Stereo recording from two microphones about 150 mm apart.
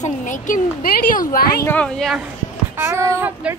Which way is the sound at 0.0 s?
60° left (ahead or behind).